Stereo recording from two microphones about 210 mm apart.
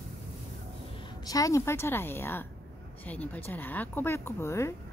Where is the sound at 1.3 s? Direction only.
15° left (ahead or behind).